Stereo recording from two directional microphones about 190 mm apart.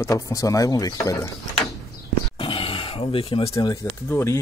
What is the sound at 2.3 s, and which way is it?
Speech, 30° left (ahead or behind).